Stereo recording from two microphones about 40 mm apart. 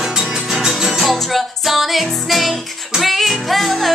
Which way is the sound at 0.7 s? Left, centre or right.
Centre.